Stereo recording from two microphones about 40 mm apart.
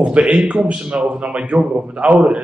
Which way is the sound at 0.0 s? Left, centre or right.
Right.